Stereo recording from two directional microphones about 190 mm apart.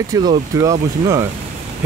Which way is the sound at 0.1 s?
20° right (ahead or behind).